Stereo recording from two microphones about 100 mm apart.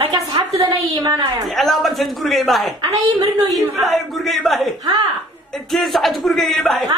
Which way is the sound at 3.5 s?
Centre (ahead or behind).